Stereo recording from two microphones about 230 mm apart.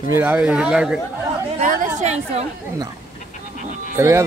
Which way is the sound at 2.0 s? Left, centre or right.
Right.